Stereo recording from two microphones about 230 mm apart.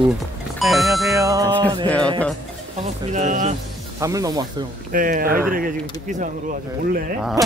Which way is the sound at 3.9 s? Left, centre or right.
Centre.